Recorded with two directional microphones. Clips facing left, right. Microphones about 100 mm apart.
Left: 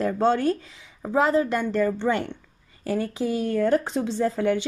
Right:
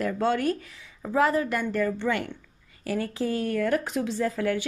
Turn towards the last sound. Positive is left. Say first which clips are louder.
# left 3 dB
turn(degrees=25)  # may be behind; listen again after turning